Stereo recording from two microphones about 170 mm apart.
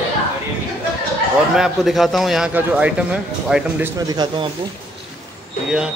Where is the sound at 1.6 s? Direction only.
Centre (ahead or behind).